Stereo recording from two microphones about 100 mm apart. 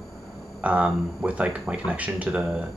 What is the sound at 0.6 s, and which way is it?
Speech, 15° right (ahead or behind).